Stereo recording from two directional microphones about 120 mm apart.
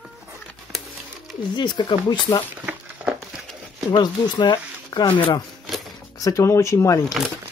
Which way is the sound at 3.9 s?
40° left (ahead or behind).